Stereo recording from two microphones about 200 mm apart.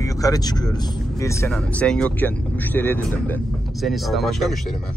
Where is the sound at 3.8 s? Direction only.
Centre (ahead or behind).